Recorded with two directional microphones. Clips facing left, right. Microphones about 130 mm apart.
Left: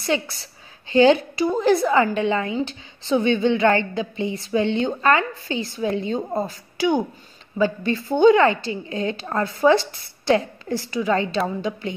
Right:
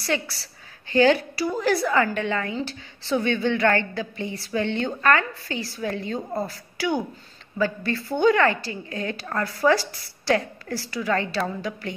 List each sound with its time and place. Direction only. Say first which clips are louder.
0.0 s speech: left 3 dB; 20° left (ahead or behind)